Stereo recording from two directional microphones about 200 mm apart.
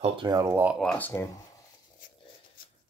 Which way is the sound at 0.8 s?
5° left (ahead or behind).